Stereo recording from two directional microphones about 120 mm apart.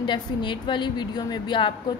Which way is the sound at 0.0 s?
40° left (ahead or behind).